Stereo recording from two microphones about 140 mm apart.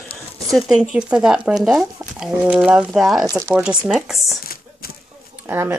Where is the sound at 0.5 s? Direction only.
Centre (ahead or behind).